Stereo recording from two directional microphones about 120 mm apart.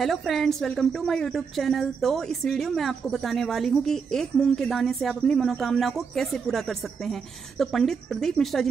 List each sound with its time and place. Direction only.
0.0 s a woman's voice: centre (ahead or behind)